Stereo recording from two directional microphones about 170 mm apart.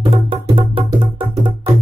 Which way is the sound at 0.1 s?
30° right (ahead or behind).